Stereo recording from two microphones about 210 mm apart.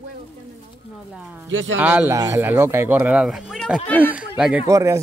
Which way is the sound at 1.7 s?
5° right (ahead or behind).